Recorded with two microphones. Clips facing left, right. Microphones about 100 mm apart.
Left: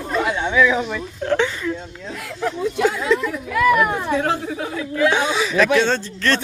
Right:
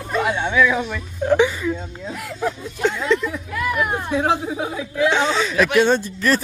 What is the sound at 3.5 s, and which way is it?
Speech, 90° left.